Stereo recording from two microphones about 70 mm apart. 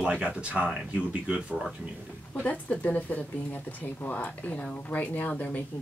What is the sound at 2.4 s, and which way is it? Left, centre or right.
Speech, left.